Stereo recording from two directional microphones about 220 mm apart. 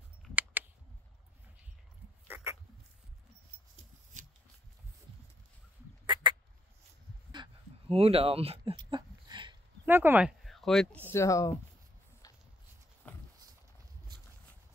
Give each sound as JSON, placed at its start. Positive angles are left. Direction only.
{"t": 2.2, "sound": "dog", "side_deg": -10}
{"t": 6.0, "sound": "a sound", "side_deg": -20}
{"t": 7.4, "sound": "a sound", "side_deg": -20}
{"t": 7.9, "sound": "speech", "side_deg": -25}
{"t": 9.8, "sound": "speech", "side_deg": -10}
{"t": 11.1, "sound": "speech", "side_deg": 15}
{"t": 13.0, "sound": "clip-clop", "side_deg": 5}